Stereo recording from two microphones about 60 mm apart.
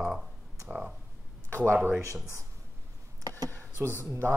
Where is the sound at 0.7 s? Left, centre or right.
Right.